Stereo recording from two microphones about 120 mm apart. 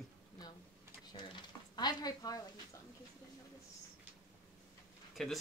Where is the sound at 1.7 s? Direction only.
35° left (ahead or behind).